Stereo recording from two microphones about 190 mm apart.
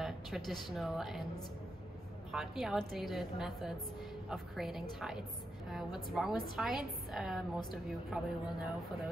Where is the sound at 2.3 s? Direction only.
Centre (ahead or behind).